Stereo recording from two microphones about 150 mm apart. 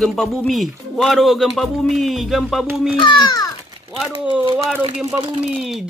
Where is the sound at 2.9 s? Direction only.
30° left (ahead or behind).